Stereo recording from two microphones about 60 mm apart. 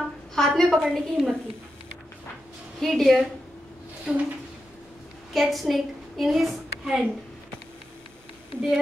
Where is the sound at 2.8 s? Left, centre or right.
Centre.